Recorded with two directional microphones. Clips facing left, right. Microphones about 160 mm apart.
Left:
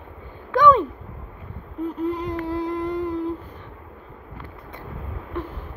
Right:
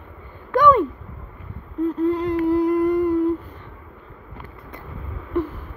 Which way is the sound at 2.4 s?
15° right (ahead or behind).